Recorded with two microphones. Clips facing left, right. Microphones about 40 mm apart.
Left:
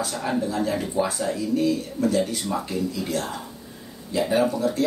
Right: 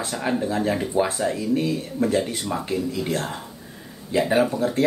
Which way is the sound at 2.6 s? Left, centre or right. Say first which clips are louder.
Right 2 dB; right.